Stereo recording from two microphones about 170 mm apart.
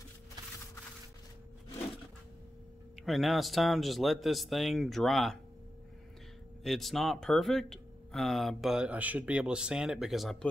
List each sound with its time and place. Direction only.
3.0 s speech: centre (ahead or behind)
6.6 s speech: centre (ahead or behind)